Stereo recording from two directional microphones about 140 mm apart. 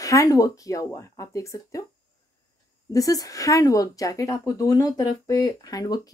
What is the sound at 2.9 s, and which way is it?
Speech, 25° left (ahead or behind).